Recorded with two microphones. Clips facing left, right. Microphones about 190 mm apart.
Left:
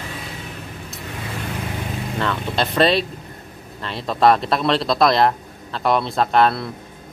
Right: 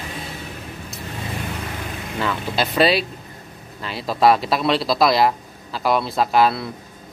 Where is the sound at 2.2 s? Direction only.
5° right (ahead or behind).